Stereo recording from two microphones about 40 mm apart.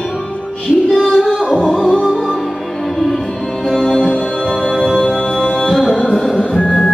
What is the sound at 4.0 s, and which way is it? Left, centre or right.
Music, left.